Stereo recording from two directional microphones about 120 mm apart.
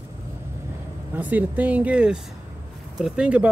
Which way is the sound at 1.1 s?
15° right (ahead or behind).